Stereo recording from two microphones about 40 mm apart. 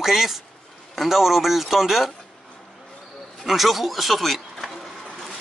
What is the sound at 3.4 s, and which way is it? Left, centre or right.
A man's voice, centre.